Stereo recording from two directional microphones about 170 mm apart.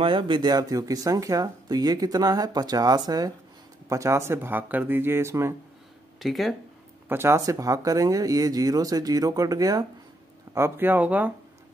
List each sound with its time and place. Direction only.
0.0 s speech: 30° right (ahead or behind)
6.1 s speech: centre (ahead or behind)
7.1 s speech: 15° right (ahead or behind)